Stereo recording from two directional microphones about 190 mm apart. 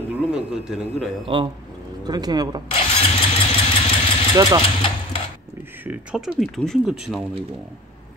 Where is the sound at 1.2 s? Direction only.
25° right (ahead or behind).